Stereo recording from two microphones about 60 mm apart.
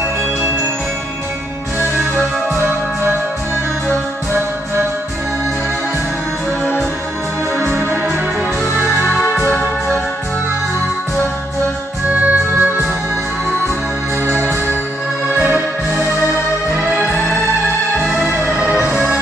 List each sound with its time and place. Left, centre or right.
7.6 s organ: right
9.2 s music: left
12.1 s music: right
14.2 s music: right
18.8 s music: right